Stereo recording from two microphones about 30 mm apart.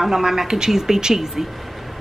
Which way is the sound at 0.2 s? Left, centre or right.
Centre.